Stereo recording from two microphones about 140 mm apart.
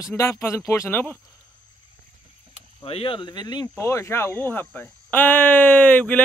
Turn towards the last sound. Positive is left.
turn(degrees=10)  # may be behind; listen again after turning